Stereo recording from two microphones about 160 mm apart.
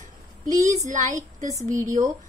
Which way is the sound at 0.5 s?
20° right (ahead or behind).